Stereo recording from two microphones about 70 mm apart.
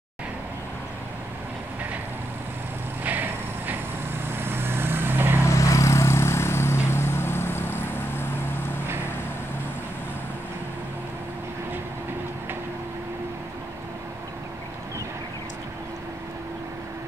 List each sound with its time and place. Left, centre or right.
3.0 s vehicle: right
5.4 s vehicle: left